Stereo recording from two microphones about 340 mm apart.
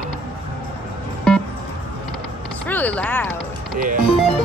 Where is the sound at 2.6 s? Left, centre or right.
Centre.